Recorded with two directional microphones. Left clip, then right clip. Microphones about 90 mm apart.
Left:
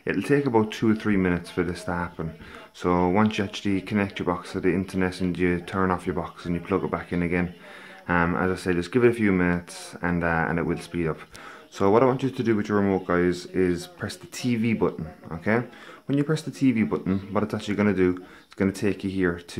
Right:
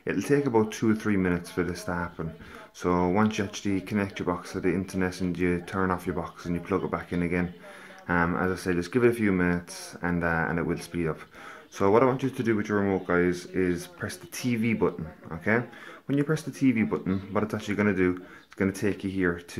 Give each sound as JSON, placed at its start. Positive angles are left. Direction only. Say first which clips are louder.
{"t": 0.0, "sound": "speech", "louder": "left 2 dB", "side_deg": 20}